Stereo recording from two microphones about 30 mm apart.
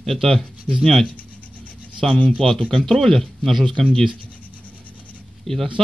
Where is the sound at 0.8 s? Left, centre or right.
Centre.